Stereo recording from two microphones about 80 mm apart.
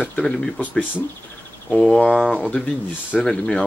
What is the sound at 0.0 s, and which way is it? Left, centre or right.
Speech, centre.